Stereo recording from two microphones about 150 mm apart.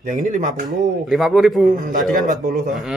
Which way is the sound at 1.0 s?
Centre (ahead or behind).